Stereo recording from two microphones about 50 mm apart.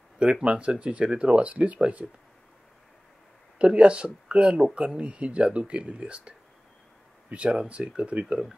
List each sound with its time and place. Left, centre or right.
0.2 s speech: right
3.5 s speech: right